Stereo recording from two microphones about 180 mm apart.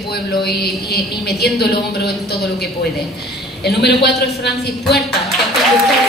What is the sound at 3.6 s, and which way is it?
A woman's voice, 65° left (ahead or behind).